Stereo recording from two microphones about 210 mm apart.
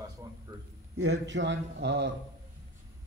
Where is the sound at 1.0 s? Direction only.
55° right (ahead or behind).